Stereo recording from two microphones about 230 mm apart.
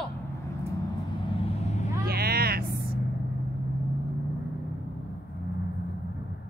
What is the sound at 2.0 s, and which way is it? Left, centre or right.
Vehicle, right.